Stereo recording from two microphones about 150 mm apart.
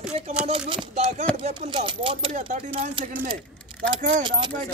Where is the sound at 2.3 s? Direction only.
55° right (ahead or behind).